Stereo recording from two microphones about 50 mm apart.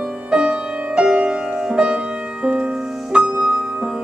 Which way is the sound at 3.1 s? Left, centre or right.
Right.